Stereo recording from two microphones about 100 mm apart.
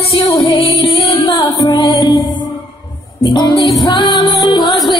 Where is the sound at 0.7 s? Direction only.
60° left (ahead or behind).